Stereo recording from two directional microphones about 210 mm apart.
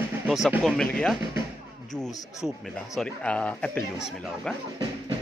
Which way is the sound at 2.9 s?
5° left (ahead or behind).